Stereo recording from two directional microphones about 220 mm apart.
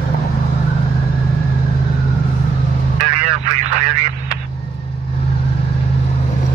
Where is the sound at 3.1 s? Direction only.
90° right.